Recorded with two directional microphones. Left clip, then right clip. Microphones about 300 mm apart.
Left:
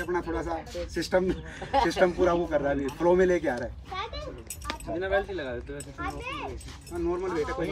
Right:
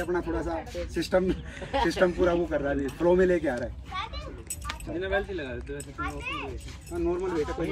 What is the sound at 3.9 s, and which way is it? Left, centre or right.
Speech, left.